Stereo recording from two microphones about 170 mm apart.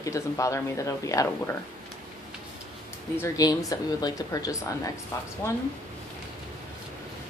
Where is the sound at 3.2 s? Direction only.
20° left (ahead or behind).